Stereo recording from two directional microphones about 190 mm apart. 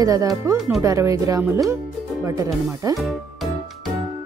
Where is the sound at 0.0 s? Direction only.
15° right (ahead or behind).